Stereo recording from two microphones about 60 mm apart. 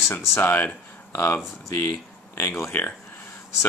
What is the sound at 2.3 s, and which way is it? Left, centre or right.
Speech, left.